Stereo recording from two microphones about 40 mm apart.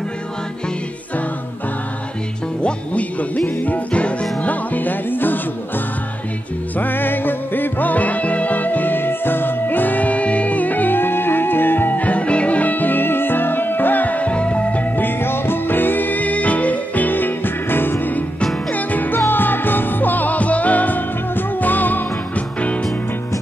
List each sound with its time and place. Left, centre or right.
2.6 s music: left
6.8 s music: left
12.0 s music: left
14.3 s music: left
15.0 s music: left
18.7 s music: left